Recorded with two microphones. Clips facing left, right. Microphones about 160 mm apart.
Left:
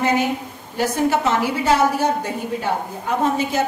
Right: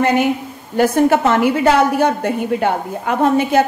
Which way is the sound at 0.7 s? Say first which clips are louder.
Right 6 dB; 55° right (ahead or behind).